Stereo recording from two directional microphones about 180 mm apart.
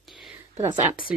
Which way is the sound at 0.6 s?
20° right (ahead or behind).